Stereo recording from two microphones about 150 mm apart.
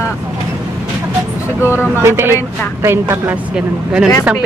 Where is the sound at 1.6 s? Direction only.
15° left (ahead or behind).